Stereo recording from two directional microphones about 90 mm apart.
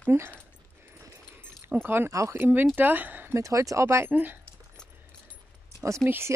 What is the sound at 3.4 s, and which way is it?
Speech, 35° right (ahead or behind).